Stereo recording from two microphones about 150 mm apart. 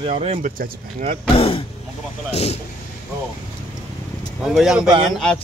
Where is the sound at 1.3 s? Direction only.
40° left (ahead or behind).